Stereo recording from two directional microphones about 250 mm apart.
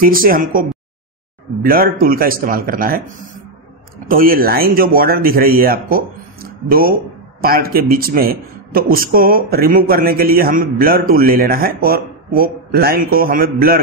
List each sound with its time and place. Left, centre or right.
0.0 s speech: right
4.1 s speech: right